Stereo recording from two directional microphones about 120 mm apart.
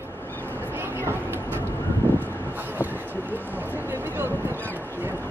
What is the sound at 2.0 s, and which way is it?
Vehicle, 15° right (ahead or behind).